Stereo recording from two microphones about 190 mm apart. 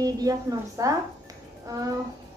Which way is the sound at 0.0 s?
20° right (ahead or behind).